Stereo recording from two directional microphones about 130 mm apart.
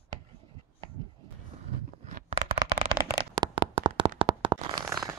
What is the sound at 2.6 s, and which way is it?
Shuffling cards, 50° right (ahead or behind).